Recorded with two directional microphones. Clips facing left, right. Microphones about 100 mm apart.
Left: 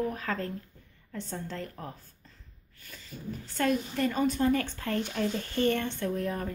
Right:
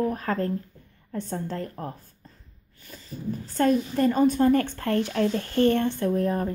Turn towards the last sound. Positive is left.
turn(degrees=-35)  # may be behind; listen again after turning